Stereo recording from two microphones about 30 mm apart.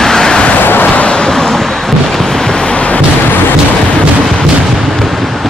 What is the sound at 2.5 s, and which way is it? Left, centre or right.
Music, left.